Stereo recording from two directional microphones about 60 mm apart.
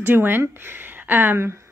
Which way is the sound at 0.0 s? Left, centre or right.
Right.